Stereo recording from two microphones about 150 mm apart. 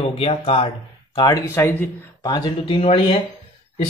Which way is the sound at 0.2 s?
40° left (ahead or behind).